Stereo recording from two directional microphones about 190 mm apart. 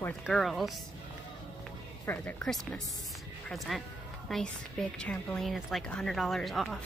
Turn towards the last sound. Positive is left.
turn(degrees=0)  # may be behind; listen again after turning